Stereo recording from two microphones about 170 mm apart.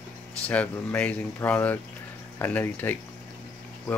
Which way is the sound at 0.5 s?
10° left (ahead or behind).